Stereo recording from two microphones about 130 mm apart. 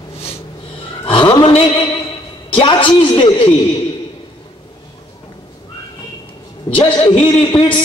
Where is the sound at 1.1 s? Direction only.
40° left (ahead or behind).